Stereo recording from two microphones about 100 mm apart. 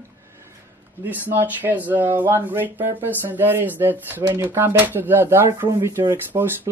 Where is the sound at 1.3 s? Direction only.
20° right (ahead or behind).